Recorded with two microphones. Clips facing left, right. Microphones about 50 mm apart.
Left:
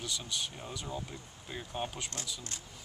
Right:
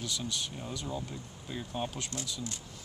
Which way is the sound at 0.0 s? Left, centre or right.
Centre.